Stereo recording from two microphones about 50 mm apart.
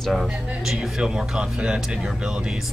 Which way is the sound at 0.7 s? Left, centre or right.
Centre.